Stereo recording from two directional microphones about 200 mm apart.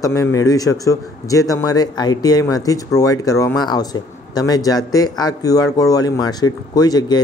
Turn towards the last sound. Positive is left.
turn(degrees=20)  # may be behind; listen again after turning